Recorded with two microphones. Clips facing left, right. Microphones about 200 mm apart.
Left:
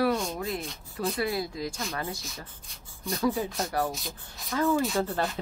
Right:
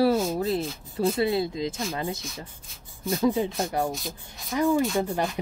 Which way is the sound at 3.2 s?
20° right (ahead or behind).